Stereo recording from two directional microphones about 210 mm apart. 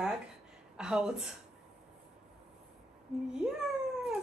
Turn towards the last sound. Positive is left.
turn(degrees=-5)  # may be behind; listen again after turning